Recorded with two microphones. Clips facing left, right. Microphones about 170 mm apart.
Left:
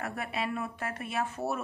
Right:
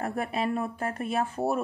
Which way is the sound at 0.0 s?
40° right (ahead or behind).